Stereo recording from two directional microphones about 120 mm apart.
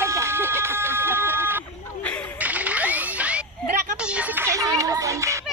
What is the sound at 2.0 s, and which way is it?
Whip, 10° left (ahead or behind).